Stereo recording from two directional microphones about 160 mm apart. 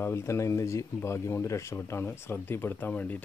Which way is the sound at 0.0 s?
15° left (ahead or behind).